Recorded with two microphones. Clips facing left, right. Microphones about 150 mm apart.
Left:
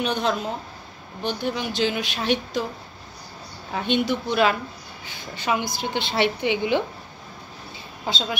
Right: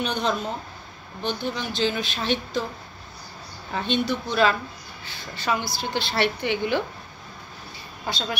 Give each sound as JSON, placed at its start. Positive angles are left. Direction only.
{"t": 0.0, "sound": "a woman's voice", "side_deg": 5}
{"t": 3.7, "sound": "speech", "side_deg": 15}
{"t": 8.0, "sound": "speech", "side_deg": 15}